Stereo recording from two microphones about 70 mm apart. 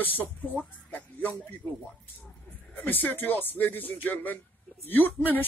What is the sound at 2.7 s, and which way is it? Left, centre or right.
Speech, left.